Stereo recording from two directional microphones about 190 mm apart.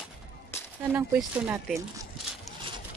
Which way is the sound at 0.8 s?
5° right (ahead or behind).